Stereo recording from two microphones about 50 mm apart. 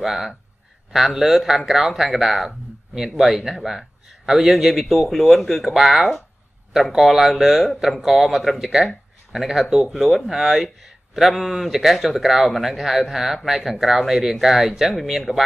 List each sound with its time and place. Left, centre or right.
0.0 s speech: centre